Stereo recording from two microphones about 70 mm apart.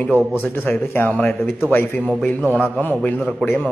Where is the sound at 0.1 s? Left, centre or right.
Right.